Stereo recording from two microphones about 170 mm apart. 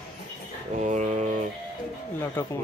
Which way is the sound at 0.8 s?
45° right (ahead or behind).